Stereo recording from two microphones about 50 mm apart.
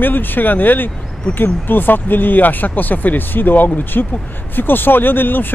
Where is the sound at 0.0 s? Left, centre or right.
Left.